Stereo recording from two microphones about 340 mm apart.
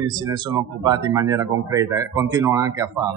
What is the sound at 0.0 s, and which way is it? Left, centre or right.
Speech, centre.